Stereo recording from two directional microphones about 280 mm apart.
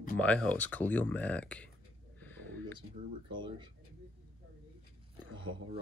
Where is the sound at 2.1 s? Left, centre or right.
Centre.